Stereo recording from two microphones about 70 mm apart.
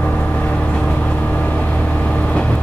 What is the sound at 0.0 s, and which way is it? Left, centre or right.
Vehicle, centre.